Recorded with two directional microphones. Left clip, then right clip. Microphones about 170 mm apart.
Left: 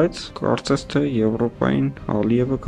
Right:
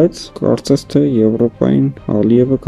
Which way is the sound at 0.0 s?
35° right (ahead or behind).